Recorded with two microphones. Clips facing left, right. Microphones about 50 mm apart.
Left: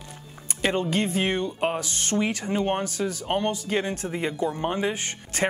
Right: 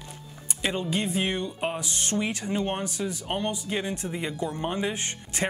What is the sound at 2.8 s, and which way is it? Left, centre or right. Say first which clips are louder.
Speech: left 3 dB; left.